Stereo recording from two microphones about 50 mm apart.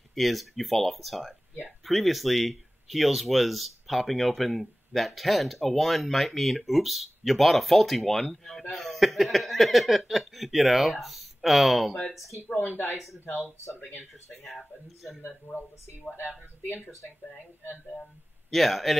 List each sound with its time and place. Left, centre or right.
0.1 s speech: centre
12.2 s speech: left
12.5 s speech: left
12.9 s speech: centre
14.4 s speech: centre
15.2 s speech: left
18.5 s speech: centre